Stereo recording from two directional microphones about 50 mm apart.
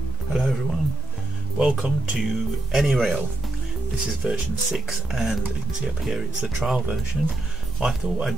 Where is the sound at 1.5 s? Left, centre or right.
Centre.